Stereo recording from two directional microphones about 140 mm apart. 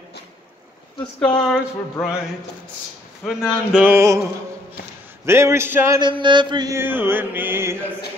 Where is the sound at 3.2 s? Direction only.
5° right (ahead or behind).